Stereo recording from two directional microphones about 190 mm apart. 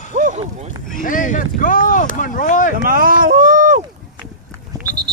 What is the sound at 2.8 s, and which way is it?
Boat, 50° right (ahead or behind).